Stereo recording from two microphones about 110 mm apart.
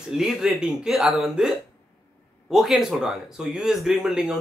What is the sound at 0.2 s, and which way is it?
Speech, 5° right (ahead or behind).